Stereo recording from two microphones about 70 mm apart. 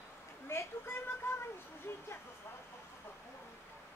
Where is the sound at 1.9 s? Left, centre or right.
Left.